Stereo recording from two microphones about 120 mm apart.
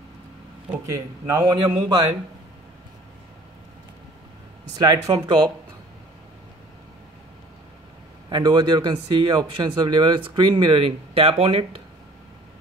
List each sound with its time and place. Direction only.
0.8 s speech: 25° right (ahead or behind)
4.7 s speech: 35° right (ahead or behind)
8.3 s speech: 40° right (ahead or behind); by 11.6 s 55° right (ahead or behind)